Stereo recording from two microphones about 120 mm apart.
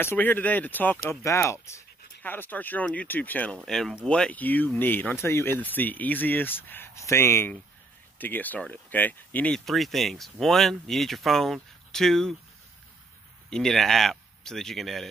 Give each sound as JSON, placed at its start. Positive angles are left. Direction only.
{"t": 0.0, "sound": "speech", "side_deg": 20}
{"t": 9.7, "sound": "speech", "side_deg": 0}
{"t": 13.5, "sound": "speech", "side_deg": 5}